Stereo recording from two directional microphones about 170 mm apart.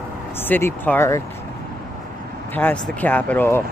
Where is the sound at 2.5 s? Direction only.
10° left (ahead or behind).